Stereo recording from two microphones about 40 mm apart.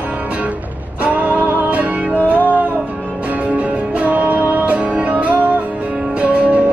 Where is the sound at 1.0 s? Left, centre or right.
Right.